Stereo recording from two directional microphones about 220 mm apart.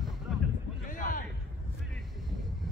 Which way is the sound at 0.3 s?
Centre (ahead or behind).